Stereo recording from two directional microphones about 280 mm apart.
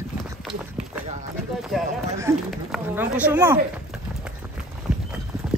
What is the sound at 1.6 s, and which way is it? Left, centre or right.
Speech, centre.